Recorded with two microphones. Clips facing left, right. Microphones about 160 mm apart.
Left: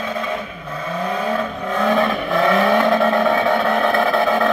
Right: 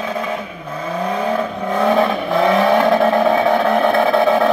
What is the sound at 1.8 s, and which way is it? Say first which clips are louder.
Vehicle: right 2 dB; 20° right (ahead or behind).